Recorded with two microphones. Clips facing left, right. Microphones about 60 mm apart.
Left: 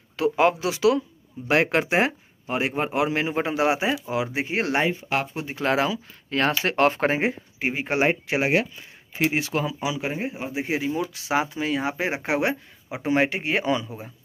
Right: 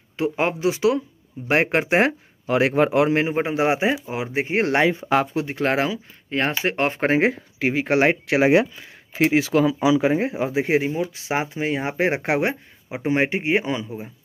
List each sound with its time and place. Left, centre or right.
0.2 s speech: right
2.4 s speech: right
3.3 s speech: right
6.3 s speech: right
7.2 s speech: right
10.9 s speech: right